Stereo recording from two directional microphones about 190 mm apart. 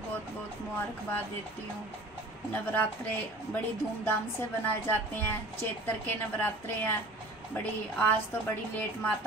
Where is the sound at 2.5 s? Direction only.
10° left (ahead or behind).